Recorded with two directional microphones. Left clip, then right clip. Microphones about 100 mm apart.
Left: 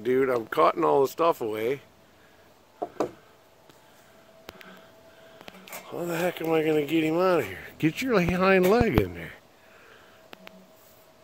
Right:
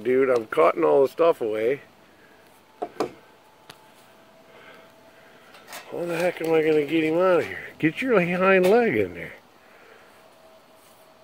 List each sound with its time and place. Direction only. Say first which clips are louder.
0.0 s speech: right 4 dB; 15° left (ahead or behind)
5.9 s speech: right 4 dB; 15° left (ahead or behind)
9.1 s speech: right 3 dB; 25° left (ahead or behind)